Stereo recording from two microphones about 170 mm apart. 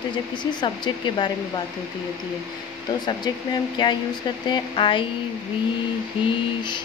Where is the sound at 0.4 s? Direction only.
25° left (ahead or behind).